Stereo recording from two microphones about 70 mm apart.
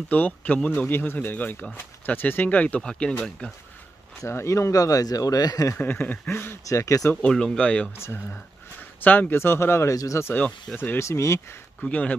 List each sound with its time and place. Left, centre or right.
0.1 s speech: left
4.3 s speech: left
5.8 s speech: left
6.7 s speech: left
7.2 s speech: centre
8.0 s speech: left
9.0 s speech: left
9.9 s speech: left
11.8 s speech: centre